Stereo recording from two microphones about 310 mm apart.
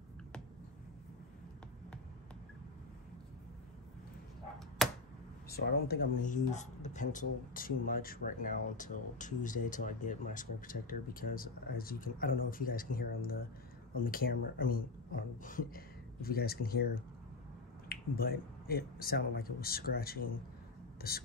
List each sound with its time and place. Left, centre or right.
4.8 s tick-tock: centre
5.5 s speech: left